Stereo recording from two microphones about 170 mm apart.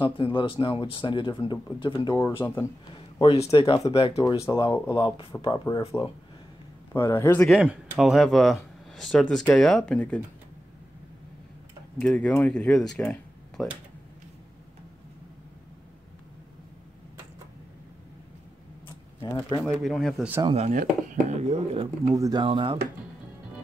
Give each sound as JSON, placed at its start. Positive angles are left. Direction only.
{"t": 0.0, "sound": "speech", "side_deg": 30}
{"t": 2.2, "sound": "speech", "side_deg": 10}
{"t": 2.9, "sound": "speech", "side_deg": 30}
{"t": 6.9, "sound": "speech", "side_deg": 15}
{"t": 7.4, "sound": "speech", "side_deg": -5}
{"t": 12.0, "sound": "speech", "side_deg": 5}
{"t": 12.9, "sound": "a sound", "side_deg": 5}
{"t": 19.6, "sound": "speech", "side_deg": 5}
{"t": 20.4, "sound": "speech", "side_deg": -40}
{"t": 22.0, "sound": "speech", "side_deg": -20}